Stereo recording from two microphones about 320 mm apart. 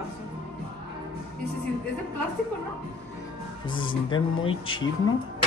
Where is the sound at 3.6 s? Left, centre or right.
Centre.